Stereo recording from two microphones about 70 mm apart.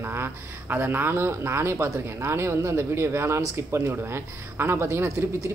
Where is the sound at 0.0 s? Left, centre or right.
Right.